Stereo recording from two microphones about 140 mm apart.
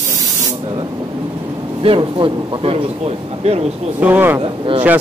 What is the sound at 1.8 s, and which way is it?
A man's voice, 40° right (ahead or behind).